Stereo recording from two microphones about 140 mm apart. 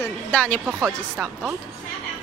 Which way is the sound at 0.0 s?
10° left (ahead or behind).